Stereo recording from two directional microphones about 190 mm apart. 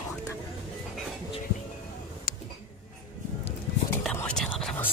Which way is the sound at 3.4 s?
5° left (ahead or behind).